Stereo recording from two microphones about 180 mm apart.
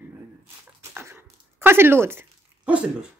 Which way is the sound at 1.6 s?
15° right (ahead or behind).